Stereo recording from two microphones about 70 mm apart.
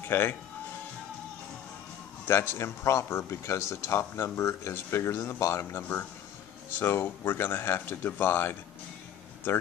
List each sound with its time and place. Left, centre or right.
0.0 s speech: left
2.2 s speech: left